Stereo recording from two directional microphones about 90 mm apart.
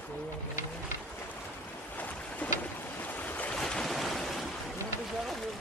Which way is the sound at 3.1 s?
20° left (ahead or behind).